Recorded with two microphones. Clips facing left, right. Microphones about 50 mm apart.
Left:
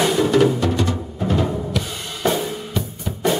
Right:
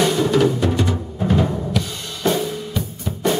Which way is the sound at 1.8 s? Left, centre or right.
Centre.